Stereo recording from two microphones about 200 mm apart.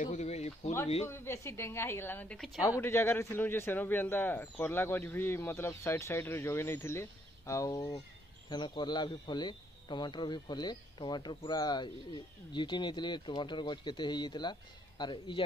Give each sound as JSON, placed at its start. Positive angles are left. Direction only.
{"t": 0.0, "sound": "speech", "side_deg": 35}
{"t": 1.0, "sound": "speech", "side_deg": 15}
{"t": 2.8, "sound": "speech", "side_deg": 10}